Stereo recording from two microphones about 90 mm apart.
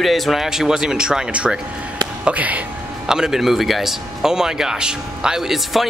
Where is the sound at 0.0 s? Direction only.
Centre (ahead or behind); by 2.6 s 15° right (ahead or behind).